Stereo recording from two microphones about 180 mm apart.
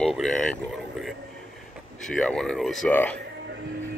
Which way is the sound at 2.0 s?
5° left (ahead or behind).